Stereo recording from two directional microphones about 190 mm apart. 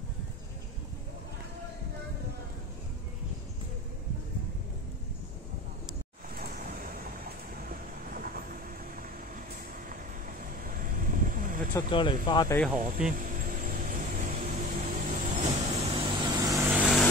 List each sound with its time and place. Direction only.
6.3 s vehicle: 50° right (ahead or behind)
9.8 s vehicle: 45° right (ahead or behind)
11.9 s speech: 25° left (ahead or behind)
12.7 s speech: 45° right (ahead or behind)
13.1 s vehicle: 45° right (ahead or behind)
15.6 s vehicle: 30° right (ahead or behind)
16.7 s vehicle: 5° right (ahead or behind)